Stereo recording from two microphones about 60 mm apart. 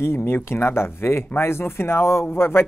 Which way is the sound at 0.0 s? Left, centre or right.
Left.